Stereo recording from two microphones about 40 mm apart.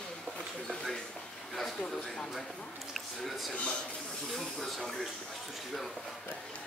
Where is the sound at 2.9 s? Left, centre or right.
Centre.